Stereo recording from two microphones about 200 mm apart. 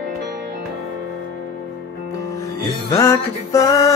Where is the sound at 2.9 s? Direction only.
15° left (ahead or behind).